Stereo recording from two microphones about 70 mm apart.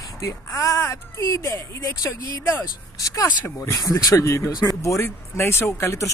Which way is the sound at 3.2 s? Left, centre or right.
Left.